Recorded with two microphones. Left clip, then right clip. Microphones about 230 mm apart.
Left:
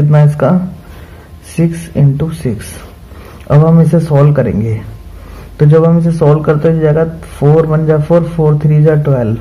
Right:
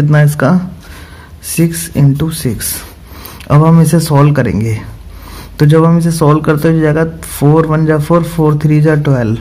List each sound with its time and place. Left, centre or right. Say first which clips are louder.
0.1 s speech: left 1 dB; right